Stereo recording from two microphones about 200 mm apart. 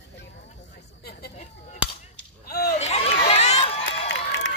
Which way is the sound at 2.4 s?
50° left (ahead or behind).